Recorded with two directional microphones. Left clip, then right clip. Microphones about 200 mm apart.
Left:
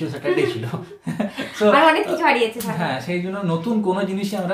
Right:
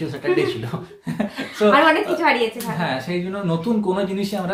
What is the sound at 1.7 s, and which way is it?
Speech, 5° left (ahead or behind).